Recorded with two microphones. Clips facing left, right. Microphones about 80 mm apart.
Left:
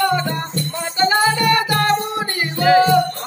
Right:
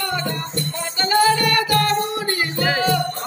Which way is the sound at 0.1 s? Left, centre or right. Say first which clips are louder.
Left 4 dB; left.